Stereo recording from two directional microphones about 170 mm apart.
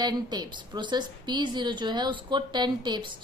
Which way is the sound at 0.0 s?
25° right (ahead or behind).